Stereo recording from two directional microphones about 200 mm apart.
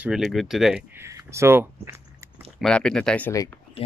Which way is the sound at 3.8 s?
30° left (ahead or behind).